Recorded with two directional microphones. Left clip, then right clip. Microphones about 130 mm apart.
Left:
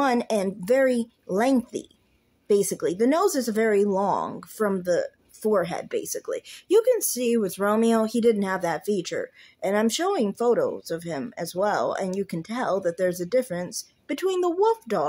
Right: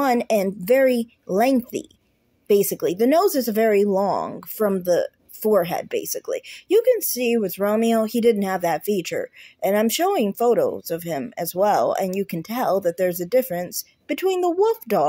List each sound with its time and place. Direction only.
0.0 s speech: 20° right (ahead or behind)